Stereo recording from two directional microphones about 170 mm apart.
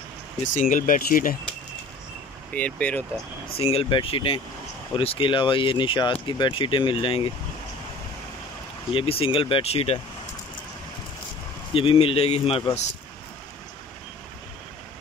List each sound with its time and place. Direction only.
0.6 s speech: 50° left (ahead or behind)
2.5 s speech: 10° left (ahead or behind)
3.5 s speech: 35° left (ahead or behind)
8.9 s speech: 35° left (ahead or behind)
11.7 s speech: 30° left (ahead or behind)